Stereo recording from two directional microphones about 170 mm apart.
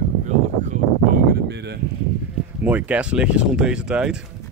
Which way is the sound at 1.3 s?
80° right.